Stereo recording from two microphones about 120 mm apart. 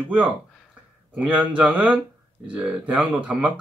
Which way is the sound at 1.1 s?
15° right (ahead or behind).